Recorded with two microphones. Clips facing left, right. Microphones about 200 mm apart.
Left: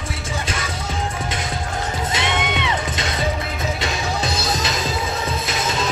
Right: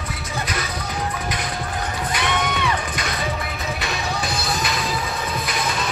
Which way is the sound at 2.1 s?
25° left (ahead or behind).